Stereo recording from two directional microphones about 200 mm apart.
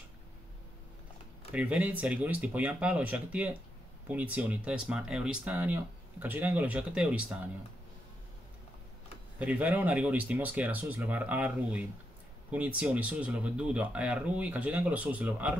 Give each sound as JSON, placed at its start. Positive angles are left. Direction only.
{"t": 1.5, "sound": "speech", "side_deg": -5}
{"t": 9.4, "sound": "speech", "side_deg": -5}